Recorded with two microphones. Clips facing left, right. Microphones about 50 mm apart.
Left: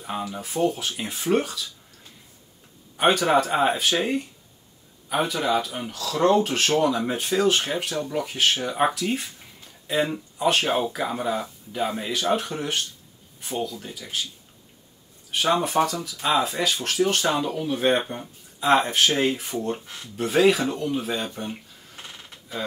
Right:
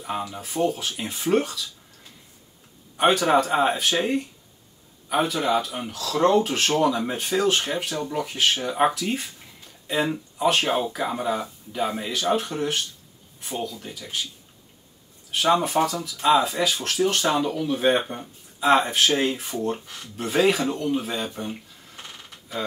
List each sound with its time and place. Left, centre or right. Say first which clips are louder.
0.0 s speech: right 1 dB; centre
3.0 s speech: right 1 dB; centre
15.4 s speech: right 1 dB; centre